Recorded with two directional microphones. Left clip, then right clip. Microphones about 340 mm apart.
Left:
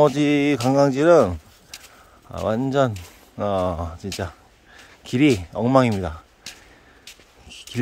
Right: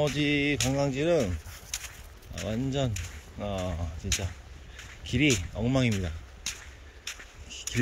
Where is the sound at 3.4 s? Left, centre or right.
Left.